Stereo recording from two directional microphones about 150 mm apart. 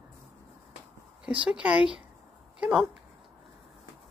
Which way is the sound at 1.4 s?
10° right (ahead or behind).